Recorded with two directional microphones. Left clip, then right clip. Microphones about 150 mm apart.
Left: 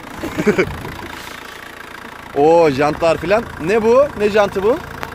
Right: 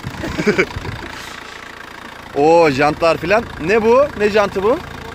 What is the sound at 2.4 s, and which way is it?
Speech, centre (ahead or behind).